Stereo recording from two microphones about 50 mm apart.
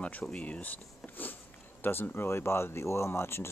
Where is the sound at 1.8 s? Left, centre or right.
Left.